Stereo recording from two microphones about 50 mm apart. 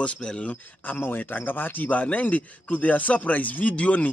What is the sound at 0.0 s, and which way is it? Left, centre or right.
Speech, left.